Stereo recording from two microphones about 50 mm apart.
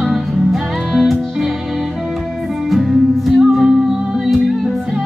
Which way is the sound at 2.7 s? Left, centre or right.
Centre.